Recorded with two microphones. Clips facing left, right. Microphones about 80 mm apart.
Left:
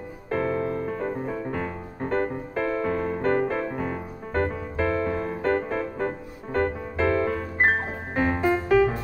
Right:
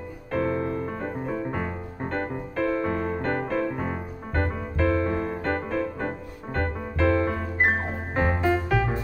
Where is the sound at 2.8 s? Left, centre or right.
Centre.